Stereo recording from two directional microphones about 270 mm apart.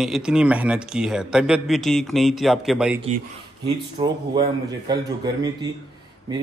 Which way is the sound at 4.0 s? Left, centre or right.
Centre.